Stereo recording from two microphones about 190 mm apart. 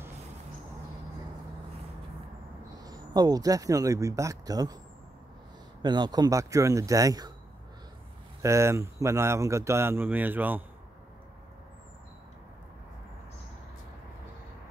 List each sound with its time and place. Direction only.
2.8 s speech: 20° right (ahead or behind)
5.8 s speech: 25° right (ahead or behind)
8.4 s speech: 15° right (ahead or behind)